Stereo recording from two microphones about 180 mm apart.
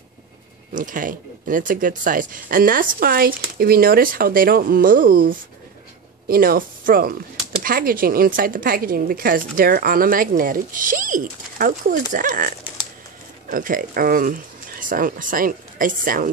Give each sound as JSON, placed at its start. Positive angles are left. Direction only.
{"t": 0.7, "sound": "speech", "side_deg": -50}